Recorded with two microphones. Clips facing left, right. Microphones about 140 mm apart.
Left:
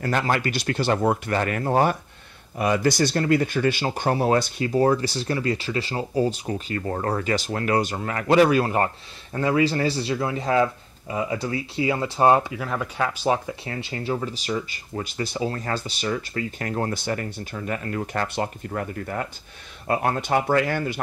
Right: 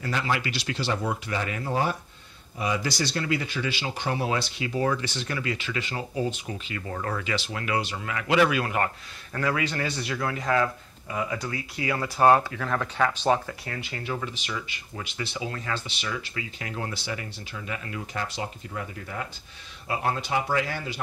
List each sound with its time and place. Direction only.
0.0 s speech: 50° left (ahead or behind); by 13.6 s 10° left (ahead or behind)
13.7 s speech: 30° left (ahead or behind); by 21.0 s 55° left (ahead or behind)